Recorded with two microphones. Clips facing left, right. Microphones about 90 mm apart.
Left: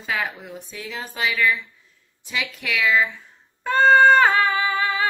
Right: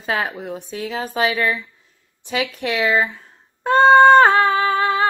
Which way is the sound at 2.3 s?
35° right (ahead or behind).